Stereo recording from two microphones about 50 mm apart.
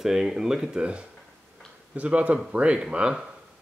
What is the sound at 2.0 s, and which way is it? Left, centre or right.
Speech, right.